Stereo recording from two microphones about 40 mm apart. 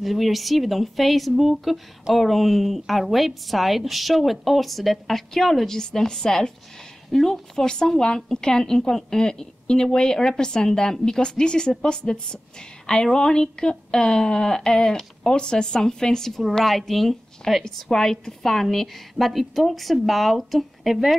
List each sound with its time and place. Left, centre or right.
0.0 s a woman's voice: centre
5.8 s a woman's voice: centre
16.3 s a woman's voice: centre
17.6 s a woman's voice: centre